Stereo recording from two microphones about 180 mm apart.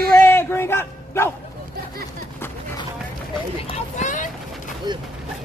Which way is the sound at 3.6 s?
40° left (ahead or behind).